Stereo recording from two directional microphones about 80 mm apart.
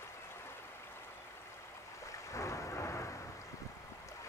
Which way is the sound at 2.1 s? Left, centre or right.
Left.